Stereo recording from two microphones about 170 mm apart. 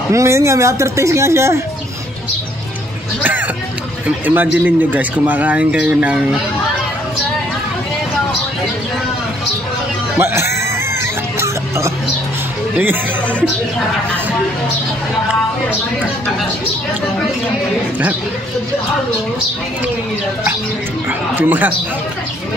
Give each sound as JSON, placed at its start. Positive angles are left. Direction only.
{"t": 0.1, "sound": "speech", "side_deg": -15}
{"t": 3.2, "sound": "speech", "side_deg": -10}
{"t": 10.1, "sound": "speech", "side_deg": -15}
{"t": 11.3, "sound": "music", "side_deg": -15}
{"t": 21.4, "sound": "speech", "side_deg": -10}